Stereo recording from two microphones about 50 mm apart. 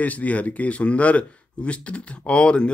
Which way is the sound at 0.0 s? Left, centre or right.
Left.